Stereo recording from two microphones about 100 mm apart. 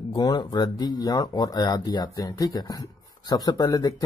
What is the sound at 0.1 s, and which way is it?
A man's voice, 40° left (ahead or behind).